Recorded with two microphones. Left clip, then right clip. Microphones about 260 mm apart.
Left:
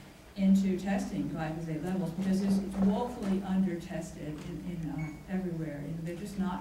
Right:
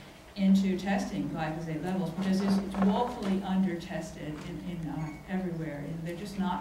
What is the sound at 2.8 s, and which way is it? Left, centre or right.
Speech, right.